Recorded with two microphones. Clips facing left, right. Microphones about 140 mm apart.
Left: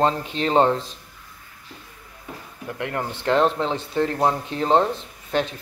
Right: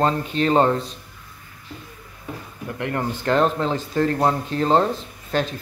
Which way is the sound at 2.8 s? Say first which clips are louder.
Right 3 dB; 15° left (ahead or behind).